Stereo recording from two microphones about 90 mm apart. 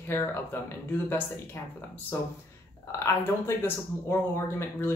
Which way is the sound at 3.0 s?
30° left (ahead or behind).